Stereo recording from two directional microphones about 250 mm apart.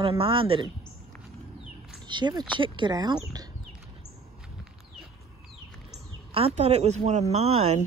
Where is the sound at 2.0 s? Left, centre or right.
Centre.